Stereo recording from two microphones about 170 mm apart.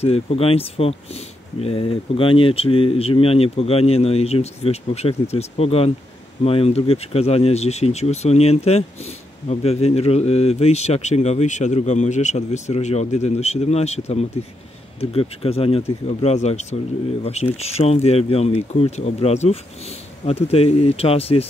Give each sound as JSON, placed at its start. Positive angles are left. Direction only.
{"t": 0.0, "sound": "speech", "side_deg": 35}